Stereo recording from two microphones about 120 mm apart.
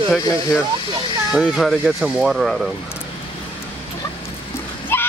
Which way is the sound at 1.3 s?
5° right (ahead or behind).